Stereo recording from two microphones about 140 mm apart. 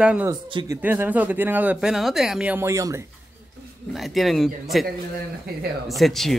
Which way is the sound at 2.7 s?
20° right (ahead or behind).